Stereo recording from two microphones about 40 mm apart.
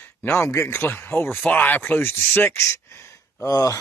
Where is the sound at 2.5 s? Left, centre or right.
Left.